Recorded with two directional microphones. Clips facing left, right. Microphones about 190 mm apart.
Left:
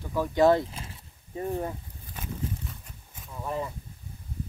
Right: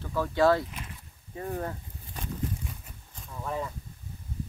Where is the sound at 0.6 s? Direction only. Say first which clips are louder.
Left 1 dB; 30° left (ahead or behind).